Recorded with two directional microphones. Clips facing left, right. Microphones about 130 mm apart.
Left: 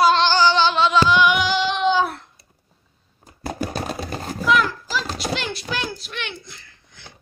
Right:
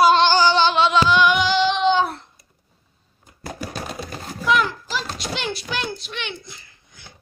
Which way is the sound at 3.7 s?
35° left (ahead or behind).